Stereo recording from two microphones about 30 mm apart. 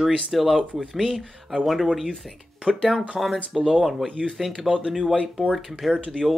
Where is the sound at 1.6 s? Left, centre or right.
Centre.